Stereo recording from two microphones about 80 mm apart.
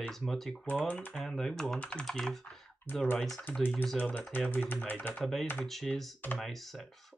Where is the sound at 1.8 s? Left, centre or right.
Centre.